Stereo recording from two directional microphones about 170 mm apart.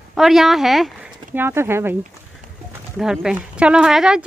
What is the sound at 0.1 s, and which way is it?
Speech, centre (ahead or behind).